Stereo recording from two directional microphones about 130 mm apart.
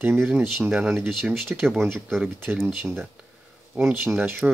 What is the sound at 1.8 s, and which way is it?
Speech, 15° right (ahead or behind).